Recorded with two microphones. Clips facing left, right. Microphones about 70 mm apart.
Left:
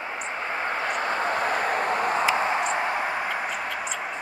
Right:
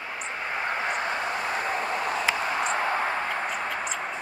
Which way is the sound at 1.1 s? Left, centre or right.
Left.